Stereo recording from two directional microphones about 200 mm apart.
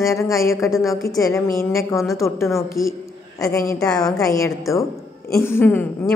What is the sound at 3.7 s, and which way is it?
Speech, 5° left (ahead or behind).